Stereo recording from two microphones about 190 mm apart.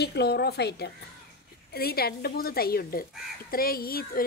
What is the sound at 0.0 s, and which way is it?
A woman's voice, 60° left (ahead or behind).